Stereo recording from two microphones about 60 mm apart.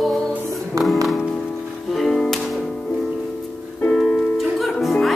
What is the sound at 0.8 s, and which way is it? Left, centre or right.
Music, right.